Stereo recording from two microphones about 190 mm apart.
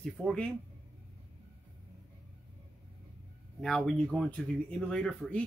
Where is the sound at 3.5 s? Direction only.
5° left (ahead or behind).